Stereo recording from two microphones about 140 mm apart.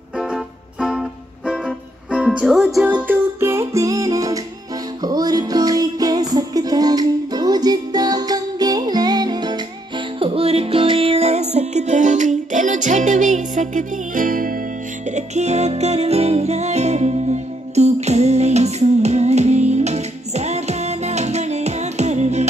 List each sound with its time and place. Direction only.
0.2 s music: 5° right (ahead or behind); by 9.6 s 30° right (ahead or behind)
10.1 s music: 40° right (ahead or behind); by 14.6 s 80° right
15.0 s music: 55° right (ahead or behind)